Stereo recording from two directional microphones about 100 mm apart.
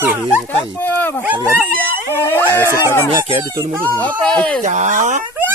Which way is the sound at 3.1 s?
75° right (ahead or behind).